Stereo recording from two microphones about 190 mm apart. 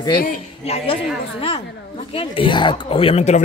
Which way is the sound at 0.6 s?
30° left (ahead or behind).